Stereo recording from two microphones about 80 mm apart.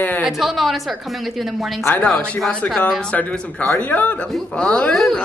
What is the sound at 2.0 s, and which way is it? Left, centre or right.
A man's voice, centre.